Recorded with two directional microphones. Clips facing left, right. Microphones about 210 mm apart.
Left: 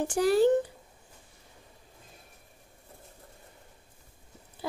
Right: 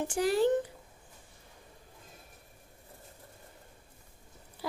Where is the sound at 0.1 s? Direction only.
35° left (ahead or behind).